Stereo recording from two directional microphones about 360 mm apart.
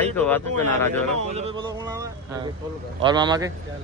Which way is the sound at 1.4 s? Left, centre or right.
Centre.